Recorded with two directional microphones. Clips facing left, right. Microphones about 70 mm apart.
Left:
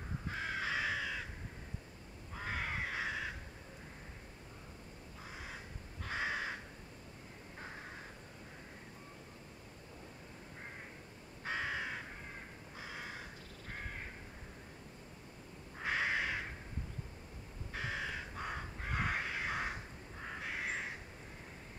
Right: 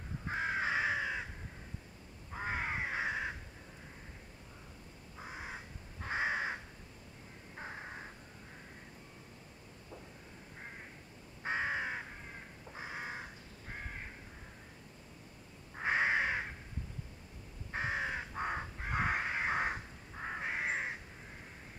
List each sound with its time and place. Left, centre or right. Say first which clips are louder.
0.3 s crow: right 5 dB; right
2.3 s crow: right 3 dB; right
5.2 s crow: right 4 dB; right
11.4 s crow: right 3 dB; right
15.7 s crow: right 4 dB; right
17.7 s crow: right 5 dB; right